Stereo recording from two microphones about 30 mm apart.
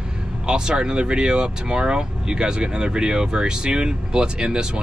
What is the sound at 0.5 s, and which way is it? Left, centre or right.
Speech, right.